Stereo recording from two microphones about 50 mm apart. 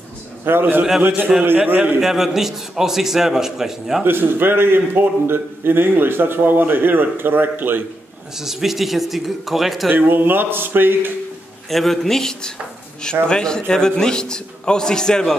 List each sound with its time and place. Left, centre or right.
0.5 s a man's voice: right
2.0 s a man's voice: centre
4.0 s a man's voice: right
8.4 s speech: centre
9.8 s a man's voice: right
11.7 s a man's voice: centre